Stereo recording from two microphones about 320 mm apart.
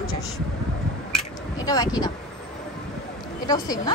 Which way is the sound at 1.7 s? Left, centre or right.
Centre.